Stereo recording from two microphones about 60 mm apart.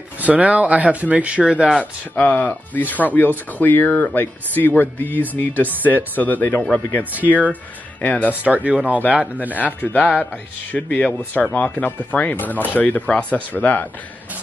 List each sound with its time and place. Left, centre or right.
0.2 s speech: right
1.8 s speech: left
8.5 s speech: right
9.5 s speech: left